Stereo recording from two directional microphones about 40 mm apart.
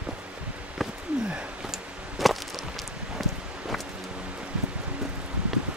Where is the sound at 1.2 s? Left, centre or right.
Right.